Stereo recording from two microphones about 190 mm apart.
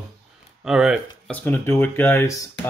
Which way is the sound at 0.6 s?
5° right (ahead or behind).